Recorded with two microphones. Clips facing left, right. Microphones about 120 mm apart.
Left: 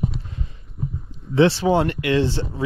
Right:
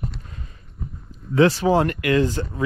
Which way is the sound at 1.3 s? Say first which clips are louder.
Even; 30° left (ahead or behind).